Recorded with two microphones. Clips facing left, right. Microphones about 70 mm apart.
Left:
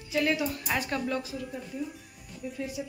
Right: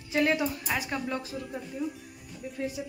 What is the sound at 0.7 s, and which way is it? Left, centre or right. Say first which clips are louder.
Speech: left 1 dB; centre.